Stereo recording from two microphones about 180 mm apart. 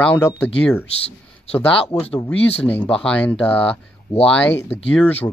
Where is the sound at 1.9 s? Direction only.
5° left (ahead or behind).